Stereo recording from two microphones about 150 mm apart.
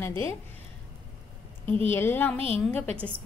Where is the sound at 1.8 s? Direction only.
15° left (ahead or behind).